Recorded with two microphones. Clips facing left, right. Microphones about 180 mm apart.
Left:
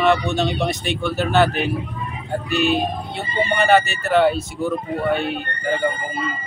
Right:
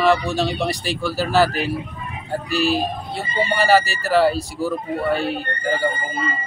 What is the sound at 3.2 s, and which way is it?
Speech, centre (ahead or behind).